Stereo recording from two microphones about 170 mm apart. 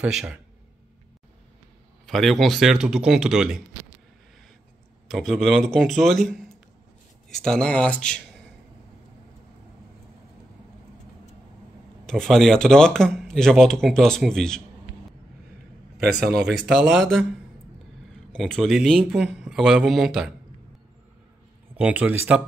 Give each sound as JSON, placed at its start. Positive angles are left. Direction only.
{"t": 0.0, "sound": "speech", "side_deg": -5}
{"t": 2.0, "sound": "speech", "side_deg": 0}
{"t": 5.0, "sound": "speech", "side_deg": 0}
{"t": 12.1, "sound": "speech", "side_deg": 5}
{"t": 16.0, "sound": "a man's voice", "side_deg": -65}
{"t": 16.6, "sound": "speech", "side_deg": 0}
{"t": 18.4, "sound": "speech", "side_deg": 0}
{"t": 21.7, "sound": "speech", "side_deg": -10}